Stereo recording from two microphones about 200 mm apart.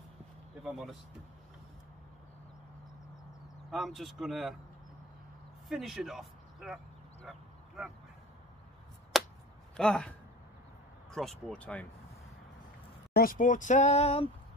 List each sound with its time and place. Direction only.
0.7 s speech: centre (ahead or behind)
3.7 s speech: centre (ahead or behind)
5.7 s speech: centre (ahead or behind)
7.2 s bow-wow: centre (ahead or behind)
9.1 s a sound: centre (ahead or behind)
9.8 s speech: 5° left (ahead or behind)
13.1 s speech: 45° left (ahead or behind); by 14.3 s 30° left (ahead or behind)